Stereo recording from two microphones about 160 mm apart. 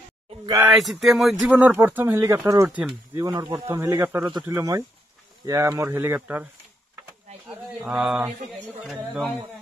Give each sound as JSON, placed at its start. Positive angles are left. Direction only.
{"t": 0.7, "sound": "speech", "side_deg": 0}